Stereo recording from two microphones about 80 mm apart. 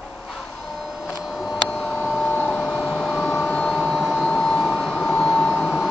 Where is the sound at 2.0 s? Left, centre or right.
Centre.